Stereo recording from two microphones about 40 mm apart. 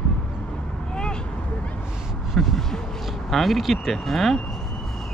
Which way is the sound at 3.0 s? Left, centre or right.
Centre.